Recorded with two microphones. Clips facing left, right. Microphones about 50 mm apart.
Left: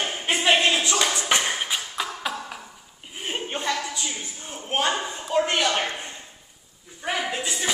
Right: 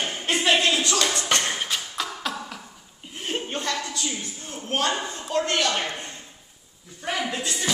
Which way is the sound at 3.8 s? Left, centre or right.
Centre.